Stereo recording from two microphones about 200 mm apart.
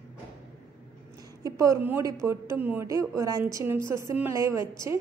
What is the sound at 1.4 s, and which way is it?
A woman's voice, 15° right (ahead or behind).